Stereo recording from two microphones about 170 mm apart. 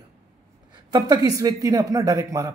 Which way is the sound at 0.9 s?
25° right (ahead or behind).